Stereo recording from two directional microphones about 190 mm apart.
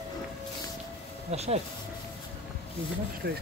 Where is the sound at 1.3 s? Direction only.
35° right (ahead or behind).